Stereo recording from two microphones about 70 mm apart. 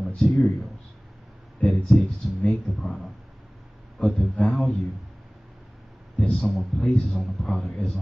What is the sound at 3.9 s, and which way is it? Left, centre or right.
Speech, centre.